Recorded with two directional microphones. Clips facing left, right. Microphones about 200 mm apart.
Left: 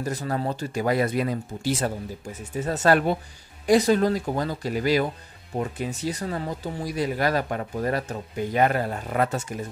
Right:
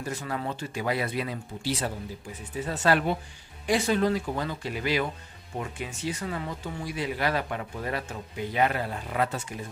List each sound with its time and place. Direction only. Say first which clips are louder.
0.0 s speech: left 5 dB; 40° left (ahead or behind)